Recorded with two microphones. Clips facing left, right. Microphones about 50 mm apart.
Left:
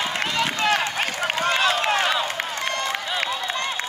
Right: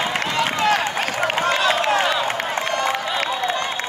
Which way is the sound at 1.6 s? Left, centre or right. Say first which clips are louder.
Right 3 dB; right.